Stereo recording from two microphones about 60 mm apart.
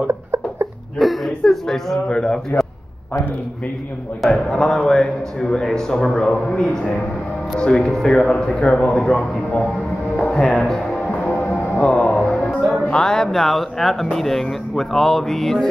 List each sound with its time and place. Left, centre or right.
0.0 s a sound: right
0.9 s chuckle: centre
2.0 s speech: centre
4.2 s speech: centre
10.3 s music: centre
11.8 s music: centre
12.9 s speech: centre